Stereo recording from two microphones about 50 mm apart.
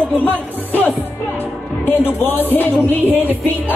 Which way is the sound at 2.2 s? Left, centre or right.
Left.